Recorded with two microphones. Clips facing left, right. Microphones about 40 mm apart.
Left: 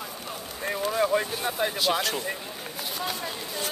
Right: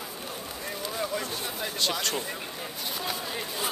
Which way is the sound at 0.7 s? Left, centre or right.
Left.